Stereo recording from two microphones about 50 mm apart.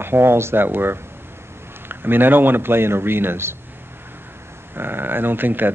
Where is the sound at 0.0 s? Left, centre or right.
Right.